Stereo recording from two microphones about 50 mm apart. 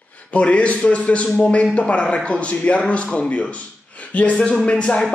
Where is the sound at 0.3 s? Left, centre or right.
Left.